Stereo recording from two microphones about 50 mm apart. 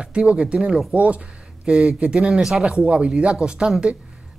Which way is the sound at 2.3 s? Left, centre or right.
Centre.